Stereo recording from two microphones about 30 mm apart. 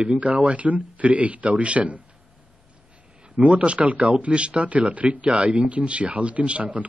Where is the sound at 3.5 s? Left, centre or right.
Right.